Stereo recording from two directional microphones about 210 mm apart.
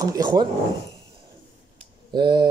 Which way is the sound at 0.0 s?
20° right (ahead or behind).